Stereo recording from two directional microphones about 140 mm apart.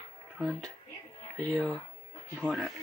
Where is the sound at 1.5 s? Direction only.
5° left (ahead or behind).